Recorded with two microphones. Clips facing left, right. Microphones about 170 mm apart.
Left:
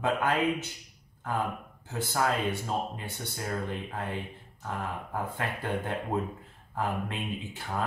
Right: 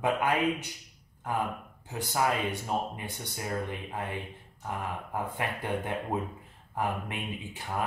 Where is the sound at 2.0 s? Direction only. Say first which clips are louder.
Even; 15° right (ahead or behind).